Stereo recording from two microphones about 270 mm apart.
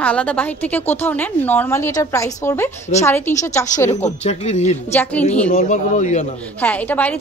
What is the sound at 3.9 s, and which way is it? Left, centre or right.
Speech, left.